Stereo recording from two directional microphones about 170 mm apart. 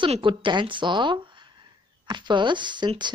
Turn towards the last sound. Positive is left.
turn(degrees=-25)  # may be behind; listen again after turning